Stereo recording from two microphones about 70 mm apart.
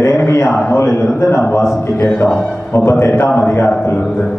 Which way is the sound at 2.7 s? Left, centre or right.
Left.